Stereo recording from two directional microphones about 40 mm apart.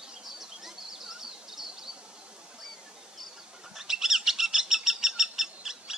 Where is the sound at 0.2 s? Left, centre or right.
Centre.